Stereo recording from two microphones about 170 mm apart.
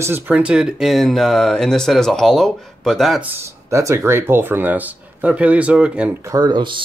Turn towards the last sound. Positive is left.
turn(degrees=-25)  # may be behind; listen again after turning